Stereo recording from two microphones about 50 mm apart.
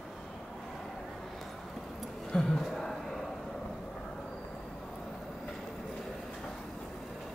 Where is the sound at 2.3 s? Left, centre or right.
Centre.